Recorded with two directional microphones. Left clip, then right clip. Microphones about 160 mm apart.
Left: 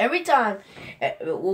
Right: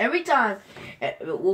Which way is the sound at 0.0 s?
50° left (ahead or behind).